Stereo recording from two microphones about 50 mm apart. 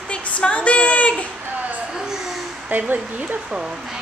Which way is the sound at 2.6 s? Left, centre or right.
Right.